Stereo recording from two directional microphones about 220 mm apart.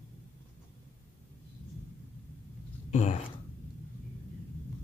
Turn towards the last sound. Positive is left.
turn(degrees=30)  # may be behind; listen again after turning